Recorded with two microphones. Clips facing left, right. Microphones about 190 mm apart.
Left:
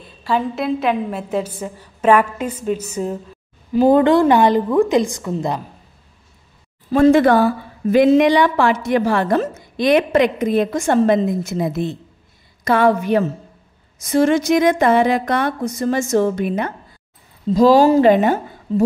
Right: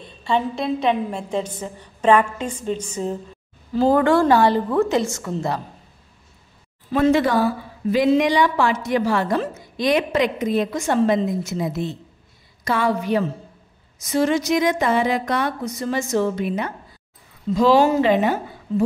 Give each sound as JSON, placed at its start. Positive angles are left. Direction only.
{"t": 0.0, "sound": "a woman's voice", "side_deg": 5}
{"t": 3.7, "sound": "a woman's voice", "side_deg": 20}
{"t": 6.9, "sound": "a woman's voice", "side_deg": 45}
{"t": 17.5, "sound": "speech", "side_deg": 35}
{"t": 18.1, "sound": "speech", "side_deg": 45}
{"t": 18.7, "sound": "speech", "side_deg": 35}